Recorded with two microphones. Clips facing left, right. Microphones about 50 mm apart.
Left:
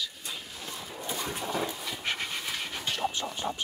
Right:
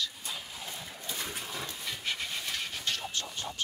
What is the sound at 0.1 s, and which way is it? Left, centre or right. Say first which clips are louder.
Vehicle: even; centre.